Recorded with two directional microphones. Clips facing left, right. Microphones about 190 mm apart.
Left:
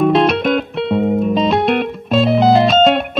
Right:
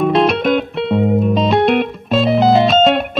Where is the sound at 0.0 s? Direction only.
Centre (ahead or behind).